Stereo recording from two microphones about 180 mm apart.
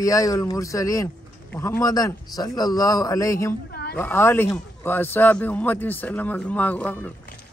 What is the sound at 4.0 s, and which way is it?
A man's voice, 10° left (ahead or behind).